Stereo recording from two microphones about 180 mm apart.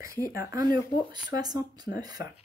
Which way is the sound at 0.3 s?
15° right (ahead or behind).